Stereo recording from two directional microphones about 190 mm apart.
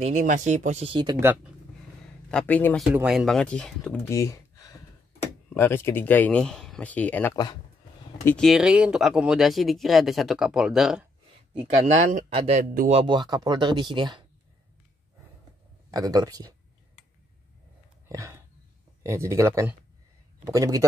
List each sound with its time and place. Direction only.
0.0 s a man's voice: 40° right (ahead or behind)
1.2 s speech: 10° right (ahead or behind)
2.3 s speech: 10° left (ahead or behind)
2.9 s speech: 5° right (ahead or behind)
4.1 s a sound: 15° left (ahead or behind)
5.5 s speech: 10° left (ahead or behind)
8.3 s speech: centre (ahead or behind)
11.8 s a man's voice: 40° right (ahead or behind)
13.0 s speech: 25° right (ahead or behind)
15.9 s speech: 20° right (ahead or behind)
18.0 s a sound: 15° right (ahead or behind)
19.0 s speech: 15° right (ahead or behind)